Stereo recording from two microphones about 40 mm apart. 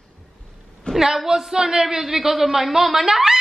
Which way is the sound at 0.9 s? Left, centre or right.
Centre.